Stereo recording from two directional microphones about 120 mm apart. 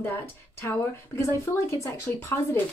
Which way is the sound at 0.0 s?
20° left (ahead or behind).